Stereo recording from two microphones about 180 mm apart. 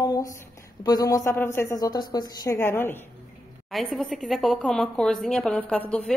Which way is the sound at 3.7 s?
Centre (ahead or behind).